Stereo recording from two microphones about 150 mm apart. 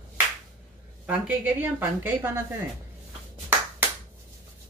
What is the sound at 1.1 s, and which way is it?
Speech, 10° right (ahead or behind).